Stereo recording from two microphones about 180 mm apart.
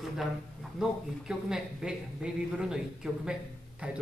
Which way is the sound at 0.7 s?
5° right (ahead or behind).